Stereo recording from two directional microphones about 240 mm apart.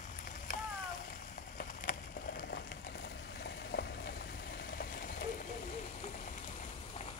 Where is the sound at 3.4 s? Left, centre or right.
Left.